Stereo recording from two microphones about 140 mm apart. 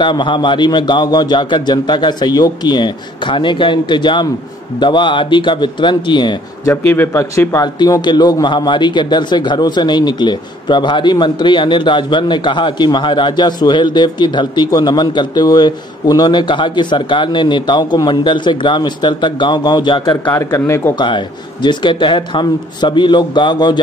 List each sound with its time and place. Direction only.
0.0 s a man's voice: 35° left (ahead or behind)
6.9 s a man's voice: 20° left (ahead or behind); by 20.3 s 35° left (ahead or behind)
20.3 s speech: 20° left (ahead or behind)
21.6 s a man's voice: 35° left (ahead or behind)